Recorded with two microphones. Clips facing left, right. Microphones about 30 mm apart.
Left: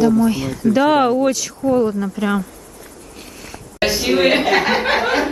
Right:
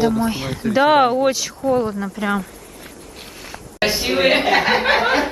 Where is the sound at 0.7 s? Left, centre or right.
Centre.